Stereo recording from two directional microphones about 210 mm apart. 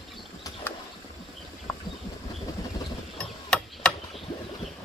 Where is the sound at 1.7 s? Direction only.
10° left (ahead or behind).